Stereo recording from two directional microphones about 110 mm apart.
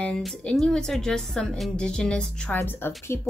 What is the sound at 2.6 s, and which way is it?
Speech, 20° left (ahead or behind).